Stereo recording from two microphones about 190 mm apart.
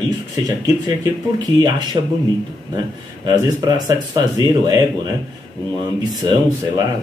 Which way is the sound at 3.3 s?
20° right (ahead or behind).